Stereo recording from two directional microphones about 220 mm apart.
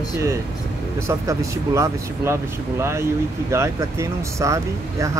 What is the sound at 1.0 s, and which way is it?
Speech, 15° right (ahead or behind).